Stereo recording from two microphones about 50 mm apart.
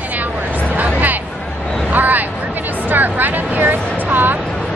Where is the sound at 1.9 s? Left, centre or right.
Right.